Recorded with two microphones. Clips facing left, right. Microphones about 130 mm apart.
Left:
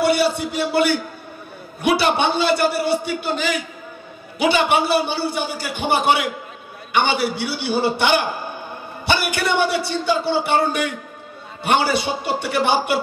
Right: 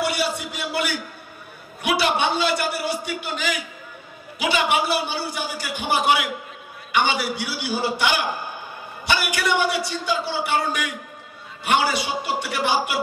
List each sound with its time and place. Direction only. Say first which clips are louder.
0.0 s a man's voice: left 7 dB; 30° left (ahead or behind)